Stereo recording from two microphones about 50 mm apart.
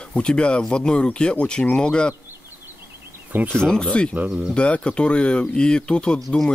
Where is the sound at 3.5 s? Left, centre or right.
Centre.